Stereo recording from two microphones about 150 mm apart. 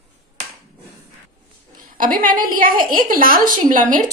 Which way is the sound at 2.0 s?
65° right (ahead or behind).